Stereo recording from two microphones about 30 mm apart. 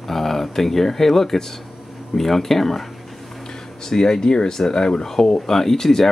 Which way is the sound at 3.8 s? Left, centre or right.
Centre.